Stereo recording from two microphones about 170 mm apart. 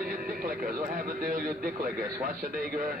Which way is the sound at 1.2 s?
55° right (ahead or behind).